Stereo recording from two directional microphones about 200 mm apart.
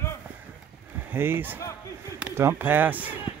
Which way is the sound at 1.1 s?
10° right (ahead or behind).